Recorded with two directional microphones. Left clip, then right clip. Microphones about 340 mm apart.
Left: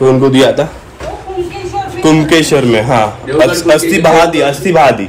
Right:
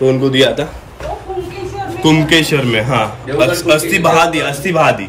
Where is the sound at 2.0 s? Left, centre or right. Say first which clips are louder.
Left 2 dB; centre.